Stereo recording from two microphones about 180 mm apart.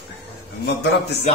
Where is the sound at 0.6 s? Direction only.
70° left (ahead or behind).